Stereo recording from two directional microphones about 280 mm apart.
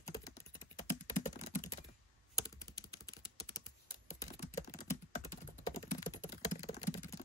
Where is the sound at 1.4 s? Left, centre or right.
Left.